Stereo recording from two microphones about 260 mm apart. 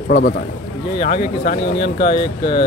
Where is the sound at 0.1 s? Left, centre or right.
Left.